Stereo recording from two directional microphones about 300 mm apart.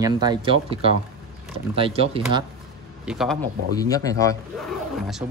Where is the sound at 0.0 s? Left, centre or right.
Centre.